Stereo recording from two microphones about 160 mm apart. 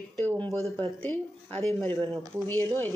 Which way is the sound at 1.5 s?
15° left (ahead or behind).